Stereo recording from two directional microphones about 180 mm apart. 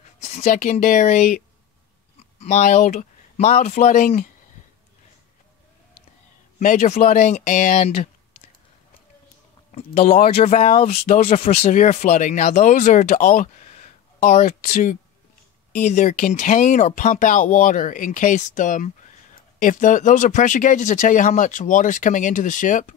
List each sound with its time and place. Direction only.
0.3 s speech: 45° left (ahead or behind)
6.6 s speech: 45° left (ahead or behind)
9.7 s speech: 40° left (ahead or behind)